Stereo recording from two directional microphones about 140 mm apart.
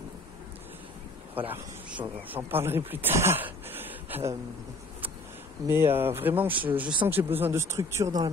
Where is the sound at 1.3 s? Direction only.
15° right (ahead or behind).